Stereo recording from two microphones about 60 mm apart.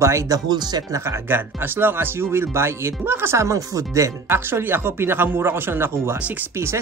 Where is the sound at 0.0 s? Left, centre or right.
Right.